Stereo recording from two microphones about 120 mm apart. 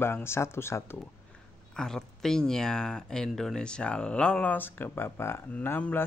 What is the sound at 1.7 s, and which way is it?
Speech, 5° left (ahead or behind).